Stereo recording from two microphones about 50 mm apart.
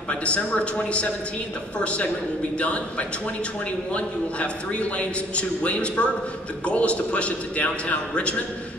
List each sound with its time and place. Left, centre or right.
0.1 s a man's voice: left